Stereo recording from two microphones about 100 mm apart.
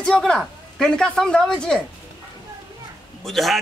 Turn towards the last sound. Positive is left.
turn(degrees=0)  # may be behind; listen again after turning